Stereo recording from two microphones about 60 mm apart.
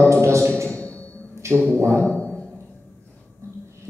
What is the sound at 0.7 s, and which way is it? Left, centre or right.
Music, left.